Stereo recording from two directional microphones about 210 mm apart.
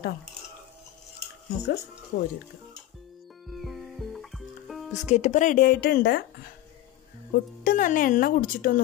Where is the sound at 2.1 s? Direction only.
65° left (ahead or behind).